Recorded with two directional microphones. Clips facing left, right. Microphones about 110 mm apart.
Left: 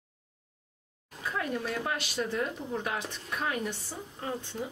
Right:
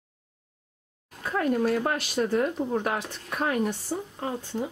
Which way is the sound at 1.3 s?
45° right (ahead or behind).